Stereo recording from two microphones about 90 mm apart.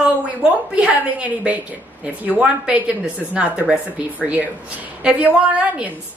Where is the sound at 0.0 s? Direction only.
10° right (ahead or behind).